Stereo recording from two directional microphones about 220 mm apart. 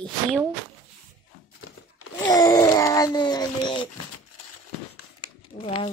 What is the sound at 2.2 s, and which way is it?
A child's voice, 15° left (ahead or behind).